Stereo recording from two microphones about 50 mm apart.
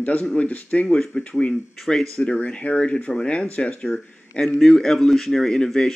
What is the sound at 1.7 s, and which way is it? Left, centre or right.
Speech, centre.